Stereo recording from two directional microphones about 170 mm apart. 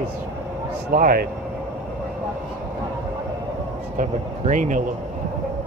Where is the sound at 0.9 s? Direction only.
55° right (ahead or behind).